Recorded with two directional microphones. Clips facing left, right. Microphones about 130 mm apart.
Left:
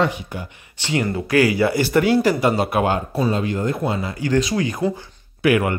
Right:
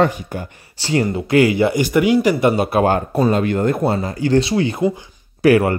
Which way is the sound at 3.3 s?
60° right (ahead or behind).